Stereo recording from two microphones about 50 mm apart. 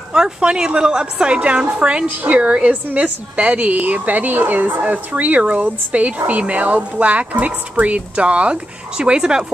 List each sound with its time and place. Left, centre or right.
0.1 s a woman's voice: centre